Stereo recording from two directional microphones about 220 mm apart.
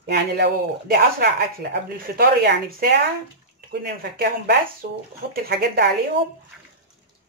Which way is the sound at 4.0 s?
45° right (ahead or behind).